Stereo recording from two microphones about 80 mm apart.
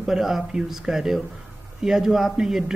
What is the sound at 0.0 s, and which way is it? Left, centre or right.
A man's voice, centre.